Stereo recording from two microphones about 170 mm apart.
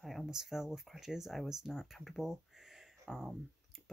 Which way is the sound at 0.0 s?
Centre (ahead or behind).